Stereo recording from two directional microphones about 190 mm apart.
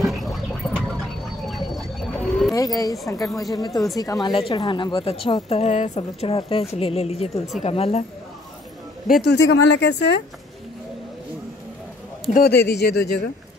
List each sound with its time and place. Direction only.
0.0 s a sound: centre (ahead or behind)
2.5 s a woman's voice: 20° left (ahead or behind)
9.0 s speech: 55° left (ahead or behind)
12.3 s speech: 50° left (ahead or behind)